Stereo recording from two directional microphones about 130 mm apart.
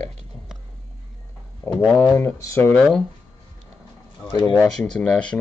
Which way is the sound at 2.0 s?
25° left (ahead or behind).